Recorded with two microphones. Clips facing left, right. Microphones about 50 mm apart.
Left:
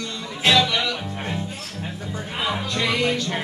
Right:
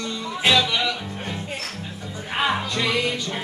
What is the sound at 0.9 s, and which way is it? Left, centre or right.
Music, left.